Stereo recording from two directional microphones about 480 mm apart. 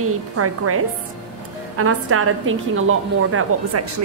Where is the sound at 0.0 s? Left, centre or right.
Right.